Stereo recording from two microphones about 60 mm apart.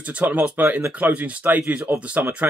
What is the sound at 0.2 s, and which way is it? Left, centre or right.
Speech, right.